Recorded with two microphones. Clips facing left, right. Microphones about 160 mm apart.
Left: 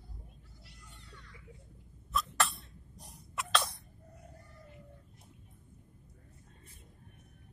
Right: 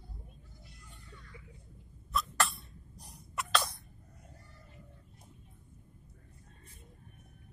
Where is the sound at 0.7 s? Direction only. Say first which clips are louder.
Even; 75° left (ahead or behind).